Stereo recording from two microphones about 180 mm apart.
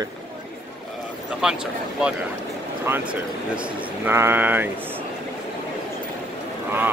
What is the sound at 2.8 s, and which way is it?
Speech, 10° right (ahead or behind).